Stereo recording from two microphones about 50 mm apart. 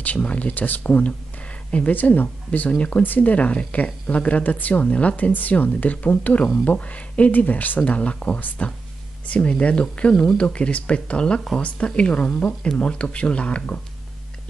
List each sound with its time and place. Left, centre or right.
0.2 s speech: left